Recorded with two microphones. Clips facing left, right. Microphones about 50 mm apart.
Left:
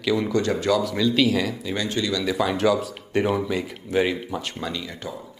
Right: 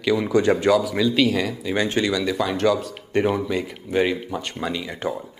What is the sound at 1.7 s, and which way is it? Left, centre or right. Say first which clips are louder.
Speech: right 6 dB; right.